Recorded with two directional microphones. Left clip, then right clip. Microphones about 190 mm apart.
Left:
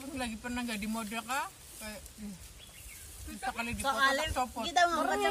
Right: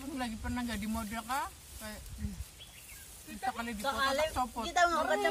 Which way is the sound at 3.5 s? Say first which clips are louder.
Left 3 dB; 40° left (ahead or behind).